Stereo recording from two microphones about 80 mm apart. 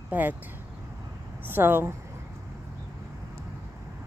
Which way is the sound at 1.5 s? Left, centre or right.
Right.